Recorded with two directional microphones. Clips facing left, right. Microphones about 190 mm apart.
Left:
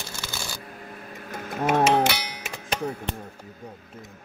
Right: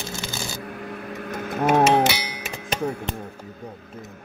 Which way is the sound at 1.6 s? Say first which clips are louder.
Right 3 dB; 55° right (ahead or behind).